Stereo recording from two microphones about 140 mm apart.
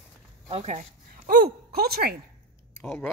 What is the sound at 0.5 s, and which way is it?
Speech, 50° right (ahead or behind).